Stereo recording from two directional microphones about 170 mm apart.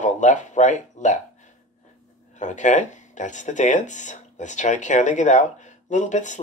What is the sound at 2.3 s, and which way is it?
Speech, 45° left (ahead or behind).